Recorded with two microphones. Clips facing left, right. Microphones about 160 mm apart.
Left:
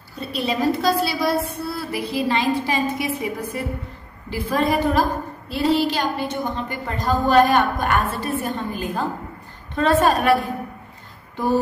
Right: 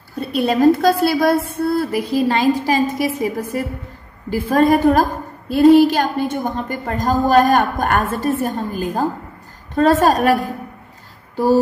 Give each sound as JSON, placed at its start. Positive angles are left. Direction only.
{"t": 0.1, "sound": "a woman's voice", "side_deg": -50}